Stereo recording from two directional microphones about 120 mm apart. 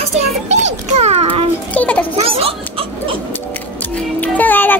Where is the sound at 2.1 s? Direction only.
55° right (ahead or behind).